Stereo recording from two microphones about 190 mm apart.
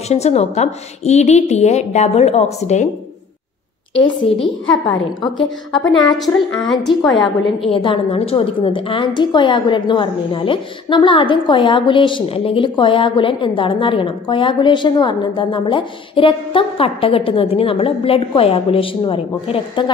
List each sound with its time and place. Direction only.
0.1 s a woman's voice: 35° left (ahead or behind)
3.9 s a woman's voice: 30° left (ahead or behind)
5.4 s a woman's voice: 80° left
6.6 s a woman's voice: centre (ahead or behind)
7.6 s a woman's voice: 30° left (ahead or behind)